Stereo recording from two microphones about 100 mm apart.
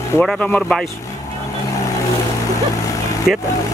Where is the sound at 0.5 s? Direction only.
Centre (ahead or behind).